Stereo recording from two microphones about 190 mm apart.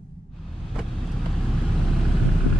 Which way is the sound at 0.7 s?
Centre (ahead or behind).